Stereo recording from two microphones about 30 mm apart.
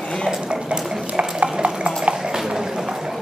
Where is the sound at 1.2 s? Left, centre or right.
Right.